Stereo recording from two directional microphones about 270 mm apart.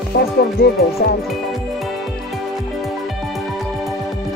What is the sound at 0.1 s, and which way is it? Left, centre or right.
Music, left.